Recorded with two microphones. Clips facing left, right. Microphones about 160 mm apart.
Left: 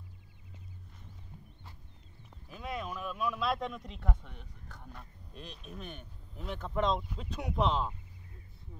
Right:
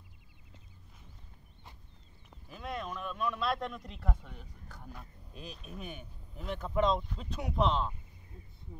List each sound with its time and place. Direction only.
2.5 s speech: centre (ahead or behind)